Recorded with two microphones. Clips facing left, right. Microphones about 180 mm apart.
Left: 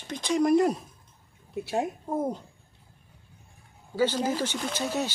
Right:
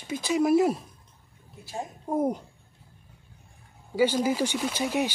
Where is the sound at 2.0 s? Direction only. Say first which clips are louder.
Right 3 dB; 15° right (ahead or behind).